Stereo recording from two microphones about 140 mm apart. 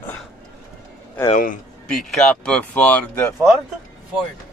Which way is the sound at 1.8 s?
5° left (ahead or behind).